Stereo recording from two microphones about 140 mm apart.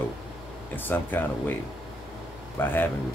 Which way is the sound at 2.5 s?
15° left (ahead or behind).